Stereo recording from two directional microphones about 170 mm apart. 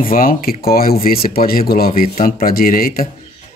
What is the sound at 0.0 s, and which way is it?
Speech, 55° left (ahead or behind).